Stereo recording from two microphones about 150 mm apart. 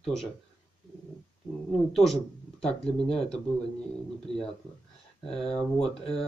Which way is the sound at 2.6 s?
40° left (ahead or behind).